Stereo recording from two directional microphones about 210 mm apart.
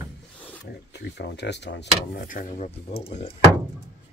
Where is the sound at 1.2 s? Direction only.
55° left (ahead or behind); by 3.3 s 35° left (ahead or behind).